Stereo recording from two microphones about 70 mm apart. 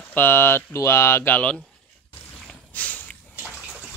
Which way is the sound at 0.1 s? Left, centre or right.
Left.